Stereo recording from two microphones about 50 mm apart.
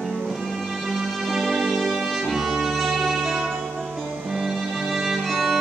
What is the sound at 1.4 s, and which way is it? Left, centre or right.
Music, centre.